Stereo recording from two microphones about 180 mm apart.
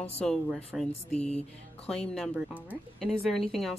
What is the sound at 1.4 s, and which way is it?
Speech, 5° left (ahead or behind).